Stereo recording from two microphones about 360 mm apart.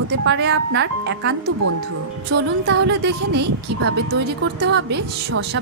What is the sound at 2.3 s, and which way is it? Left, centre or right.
Speech, right.